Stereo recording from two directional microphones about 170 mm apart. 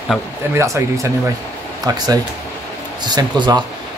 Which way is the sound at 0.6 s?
15° right (ahead or behind).